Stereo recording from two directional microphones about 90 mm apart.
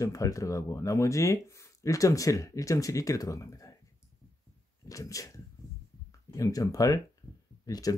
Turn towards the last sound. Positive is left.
turn(degrees=40)  # may be behind; listen again after turning